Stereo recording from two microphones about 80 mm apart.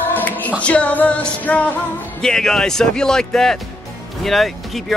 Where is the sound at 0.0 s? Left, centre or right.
Left.